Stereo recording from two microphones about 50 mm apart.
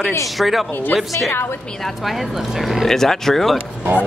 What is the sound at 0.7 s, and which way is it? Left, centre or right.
Speech, left.